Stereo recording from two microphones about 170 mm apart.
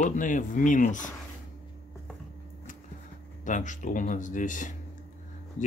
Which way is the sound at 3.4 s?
45° left (ahead or behind).